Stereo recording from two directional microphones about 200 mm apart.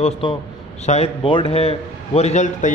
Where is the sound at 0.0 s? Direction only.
25° left (ahead or behind).